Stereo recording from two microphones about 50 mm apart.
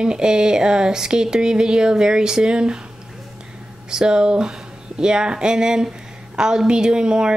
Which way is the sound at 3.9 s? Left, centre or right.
Centre.